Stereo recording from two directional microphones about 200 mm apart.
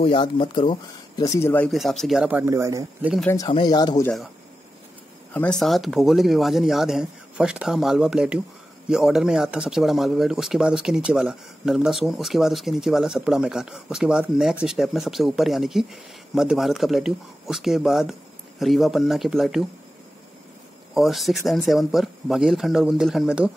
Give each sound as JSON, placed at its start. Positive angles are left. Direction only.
{"t": 0.0, "sound": "speech", "side_deg": 25}
{"t": 3.4, "sound": "speech", "side_deg": 20}
{"t": 5.3, "sound": "speech", "side_deg": 5}
{"t": 20.9, "sound": "speech", "side_deg": 0}